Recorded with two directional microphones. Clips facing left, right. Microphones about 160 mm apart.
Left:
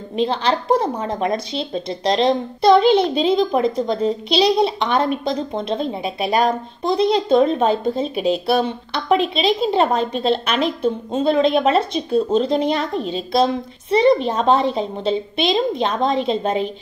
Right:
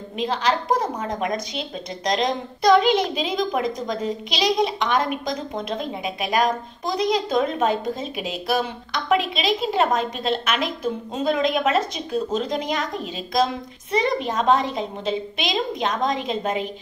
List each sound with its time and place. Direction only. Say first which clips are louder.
0.2 s a woman's voice: left 3 dB; 30° left (ahead or behind)